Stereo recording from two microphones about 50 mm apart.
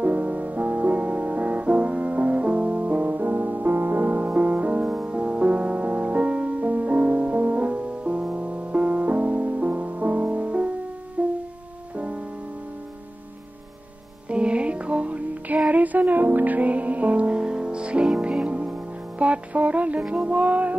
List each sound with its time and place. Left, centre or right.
0.0 s music: right
14.3 s music: right